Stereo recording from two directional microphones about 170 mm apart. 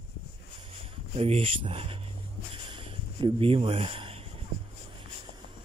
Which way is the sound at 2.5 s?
30° right (ahead or behind).